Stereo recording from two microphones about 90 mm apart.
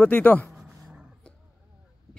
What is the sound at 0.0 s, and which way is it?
Speech, 15° left (ahead or behind).